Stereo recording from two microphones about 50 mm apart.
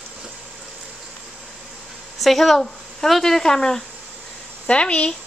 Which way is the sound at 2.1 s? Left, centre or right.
Centre.